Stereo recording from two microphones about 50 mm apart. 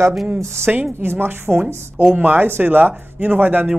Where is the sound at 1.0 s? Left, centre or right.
Right.